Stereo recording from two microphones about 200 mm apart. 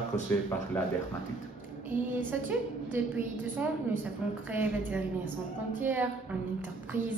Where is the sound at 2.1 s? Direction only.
10° right (ahead or behind).